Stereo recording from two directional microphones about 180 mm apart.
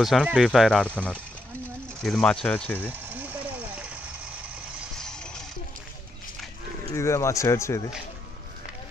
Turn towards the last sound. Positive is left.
turn(degrees=15)  # may be behind; listen again after turning